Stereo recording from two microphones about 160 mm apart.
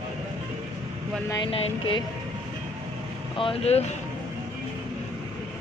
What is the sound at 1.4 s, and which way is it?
Speech, 35° left (ahead or behind).